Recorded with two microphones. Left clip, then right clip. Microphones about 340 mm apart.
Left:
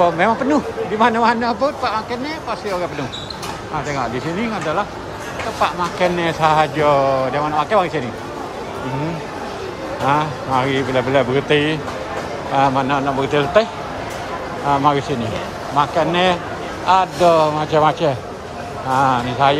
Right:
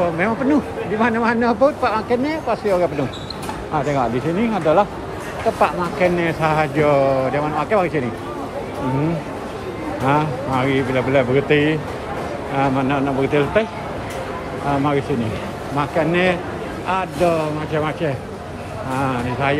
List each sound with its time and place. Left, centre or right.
0.2 s speech: centre
10.0 s speech: centre
15.8 s speech: centre